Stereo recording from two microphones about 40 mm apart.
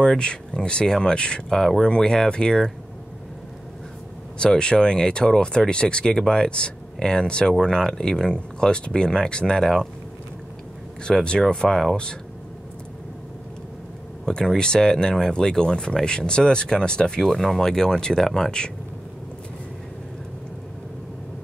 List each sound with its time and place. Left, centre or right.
0.0 s speech: left
1.6 s speech: centre
4.4 s speech: left
11.1 s speech: centre
11.5 s speech: centre
14.2 s speech: centre
17.2 s speech: centre